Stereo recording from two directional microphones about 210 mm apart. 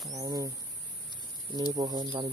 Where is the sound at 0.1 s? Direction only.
15° right (ahead or behind).